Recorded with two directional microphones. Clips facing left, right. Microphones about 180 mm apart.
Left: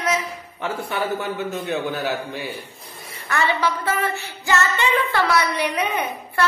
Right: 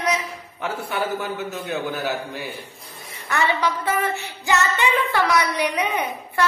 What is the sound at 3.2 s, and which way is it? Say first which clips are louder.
Female singing: even; 15° right (ahead or behind).